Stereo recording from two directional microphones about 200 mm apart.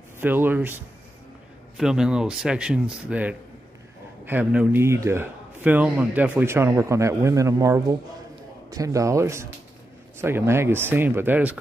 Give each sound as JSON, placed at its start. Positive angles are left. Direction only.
{"t": 0.2, "sound": "a man's voice", "side_deg": -10}